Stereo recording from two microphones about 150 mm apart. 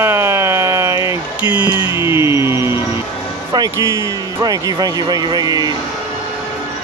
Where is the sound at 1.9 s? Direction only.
20° right (ahead or behind).